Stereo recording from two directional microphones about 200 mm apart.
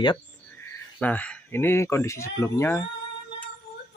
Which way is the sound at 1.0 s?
10° left (ahead or behind).